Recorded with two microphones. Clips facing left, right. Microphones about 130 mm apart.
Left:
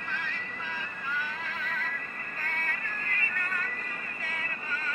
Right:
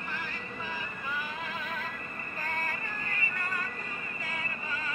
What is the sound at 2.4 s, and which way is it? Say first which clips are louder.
Music: right 2 dB; 15° right (ahead or behind).